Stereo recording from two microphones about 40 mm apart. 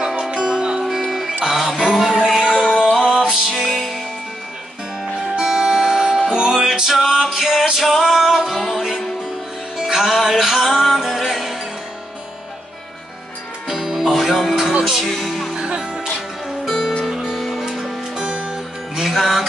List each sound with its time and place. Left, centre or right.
0.3 s music: right
0.8 s music: centre
2.5 s music: centre
3.4 s music: centre
5.3 s music: centre
13.7 s music: centre
13.9 s music: centre
15.0 s speech: centre
15.6 s music: right
16.6 s music: centre
18.2 s music: centre
19.0 s music: centre